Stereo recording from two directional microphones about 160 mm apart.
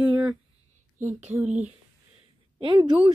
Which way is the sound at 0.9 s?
50° right (ahead or behind).